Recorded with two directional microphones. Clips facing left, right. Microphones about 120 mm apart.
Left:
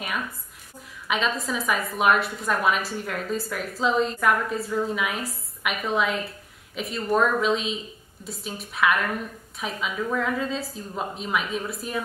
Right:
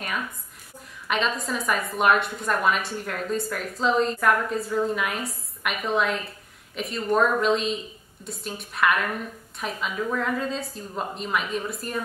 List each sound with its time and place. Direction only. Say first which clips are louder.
1.0 s a woman's voice: even; centre (ahead or behind)